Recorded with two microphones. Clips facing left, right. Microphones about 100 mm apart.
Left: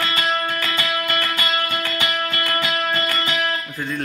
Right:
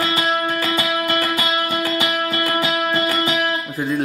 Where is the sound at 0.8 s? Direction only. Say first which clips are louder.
Right 3 dB; 20° right (ahead or behind).